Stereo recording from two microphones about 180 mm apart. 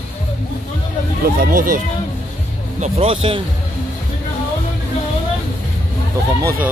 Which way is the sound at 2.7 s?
35° right (ahead or behind).